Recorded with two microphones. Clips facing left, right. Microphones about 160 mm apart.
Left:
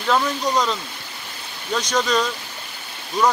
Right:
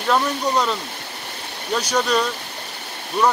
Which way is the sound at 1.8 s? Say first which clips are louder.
Even; 10° right (ahead or behind).